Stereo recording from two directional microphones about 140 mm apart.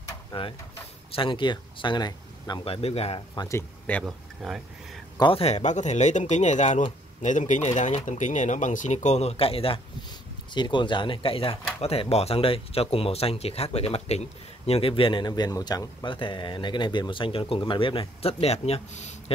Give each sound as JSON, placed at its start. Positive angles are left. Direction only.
{"t": 0.3, "sound": "speech", "side_deg": 40}
{"t": 3.4, "sound": "speech", "side_deg": 15}
{"t": 4.0, "sound": "speech", "side_deg": 0}
{"t": 5.1, "sound": "speech", "side_deg": 30}
{"t": 5.4, "sound": "speech", "side_deg": 55}